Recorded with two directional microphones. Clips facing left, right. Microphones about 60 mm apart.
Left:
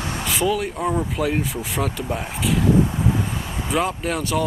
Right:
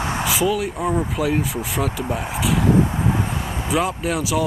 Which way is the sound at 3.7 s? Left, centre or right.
Centre.